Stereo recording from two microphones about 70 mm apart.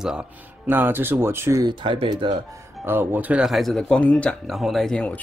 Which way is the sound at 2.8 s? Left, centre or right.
Right.